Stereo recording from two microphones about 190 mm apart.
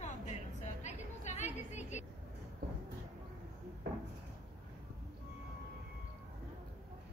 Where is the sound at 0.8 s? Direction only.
35° left (ahead or behind).